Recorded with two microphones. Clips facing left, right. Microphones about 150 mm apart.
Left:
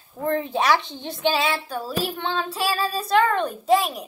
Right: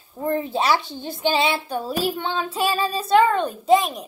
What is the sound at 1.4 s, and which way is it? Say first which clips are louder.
Child singing: right 2 dB; 20° right (ahead or behind).